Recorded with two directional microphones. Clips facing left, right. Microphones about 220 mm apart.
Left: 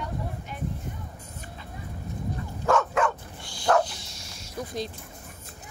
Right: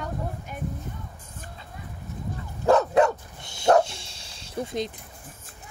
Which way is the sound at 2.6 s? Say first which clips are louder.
Right 5 dB; 35° right (ahead or behind).